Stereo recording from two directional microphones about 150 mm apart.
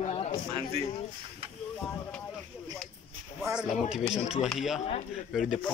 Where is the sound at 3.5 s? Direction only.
5° right (ahead or behind).